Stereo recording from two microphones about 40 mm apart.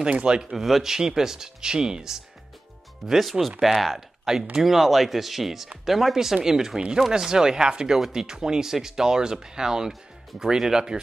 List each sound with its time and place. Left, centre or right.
0.5 s speech: centre
3.1 s speech: centre
6.1 s speech: centre